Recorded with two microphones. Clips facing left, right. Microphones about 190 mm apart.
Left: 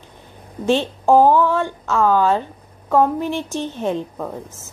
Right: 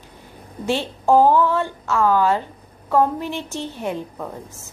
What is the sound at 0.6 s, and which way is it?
A woman's voice, 20° left (ahead or behind).